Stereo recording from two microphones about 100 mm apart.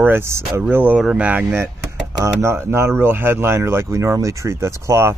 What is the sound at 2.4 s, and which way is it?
Speech, 25° right (ahead or behind).